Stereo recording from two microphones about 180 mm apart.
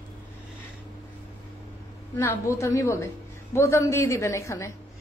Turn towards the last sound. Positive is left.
turn(degrees=15)  # may be behind; listen again after turning